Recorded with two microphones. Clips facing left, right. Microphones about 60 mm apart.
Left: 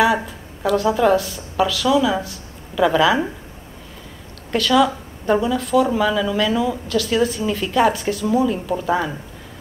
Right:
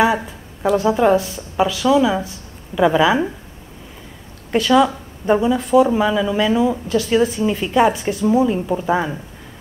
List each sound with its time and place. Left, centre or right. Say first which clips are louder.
0.7 s a woman's voice: right 1 dB; right
4.5 s a woman's voice: right 2 dB; centre